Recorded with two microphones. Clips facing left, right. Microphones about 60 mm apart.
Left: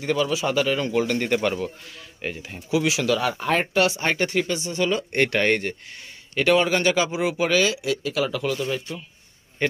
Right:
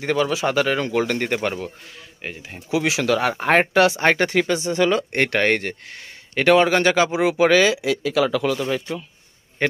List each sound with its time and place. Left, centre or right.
0.0 s speech: right
1.1 s speech: right
2.2 s speech: centre
2.9 s speech: right
5.1 s speech: right
7.2 s speech: right